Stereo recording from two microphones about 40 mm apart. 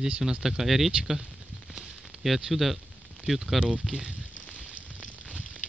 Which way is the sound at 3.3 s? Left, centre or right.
Centre.